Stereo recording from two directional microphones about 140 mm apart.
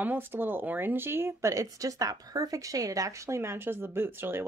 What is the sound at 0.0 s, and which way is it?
Speech, 15° right (ahead or behind).